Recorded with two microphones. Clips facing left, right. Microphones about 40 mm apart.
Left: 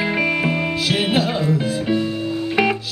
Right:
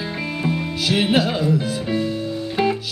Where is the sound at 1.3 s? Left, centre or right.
Left.